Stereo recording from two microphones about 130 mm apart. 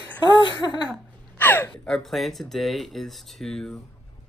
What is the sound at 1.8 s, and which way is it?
Speech, centre (ahead or behind).